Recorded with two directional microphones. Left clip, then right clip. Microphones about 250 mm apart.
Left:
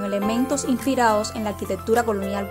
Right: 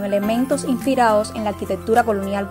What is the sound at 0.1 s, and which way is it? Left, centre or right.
A woman's voice, centre.